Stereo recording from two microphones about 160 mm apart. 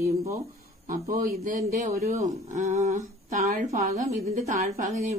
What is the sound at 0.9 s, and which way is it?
Speech, 55° right (ahead or behind).